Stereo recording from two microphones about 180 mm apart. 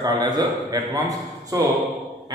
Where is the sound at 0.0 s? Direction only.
20° right (ahead or behind).